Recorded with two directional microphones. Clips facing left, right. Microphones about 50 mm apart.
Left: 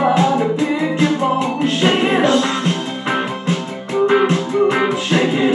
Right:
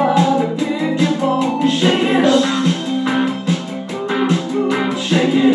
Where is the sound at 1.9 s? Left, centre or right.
Centre.